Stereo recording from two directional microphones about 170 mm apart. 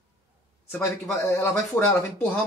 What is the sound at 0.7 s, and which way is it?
Speech, 15° left (ahead or behind).